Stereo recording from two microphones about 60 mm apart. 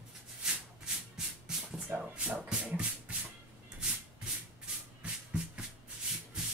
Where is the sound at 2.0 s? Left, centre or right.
Centre.